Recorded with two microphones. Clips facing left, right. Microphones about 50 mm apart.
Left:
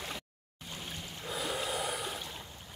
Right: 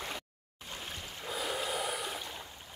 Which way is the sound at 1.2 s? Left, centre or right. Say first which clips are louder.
Even; centre.